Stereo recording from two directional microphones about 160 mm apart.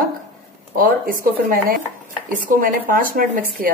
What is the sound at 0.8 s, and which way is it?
Speech, 60° right (ahead or behind).